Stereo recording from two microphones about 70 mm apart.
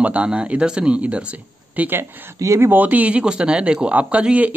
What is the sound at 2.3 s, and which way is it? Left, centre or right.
Speech, right.